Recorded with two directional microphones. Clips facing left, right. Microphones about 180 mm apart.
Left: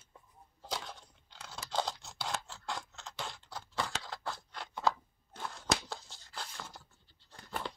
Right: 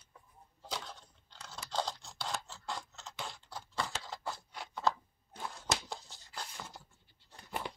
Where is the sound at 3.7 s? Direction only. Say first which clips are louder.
Left 1 dB; centre (ahead or behind).